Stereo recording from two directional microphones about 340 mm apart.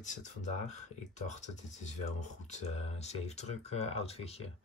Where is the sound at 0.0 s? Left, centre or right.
Left.